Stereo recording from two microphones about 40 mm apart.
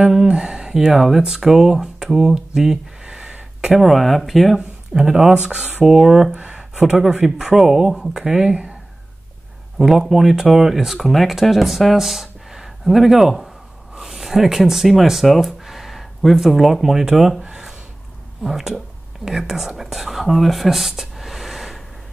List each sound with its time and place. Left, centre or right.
0.1 s speech: centre
0.4 s speech: right
3.0 s a sound: right
3.7 s speech: centre
5.0 s speech: centre
5.9 s speech: centre
8.5 s speech: right
9.8 s speech: centre
17.4 s a sound: right
18.4 s speech: centre
21.2 s a sound: centre